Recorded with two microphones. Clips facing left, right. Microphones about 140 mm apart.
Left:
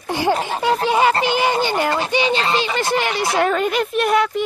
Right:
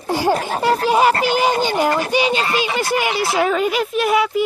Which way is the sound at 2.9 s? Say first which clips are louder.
Right 1 dB; 10° right (ahead or behind).